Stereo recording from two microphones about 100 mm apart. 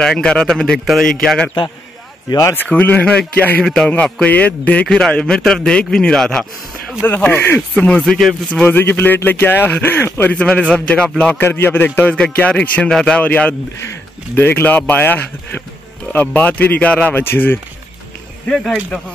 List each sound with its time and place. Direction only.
0.0 s a man's voice: 10° left (ahead or behind)
2.5 s a man's voice: 20° left (ahead or behind)
7.0 s a man's voice: 20° left (ahead or behind)
8.0 s speech: centre (ahead or behind)
8.5 s a man's voice: 15° left (ahead or behind)
11.4 s a man's voice: 20° left (ahead or behind)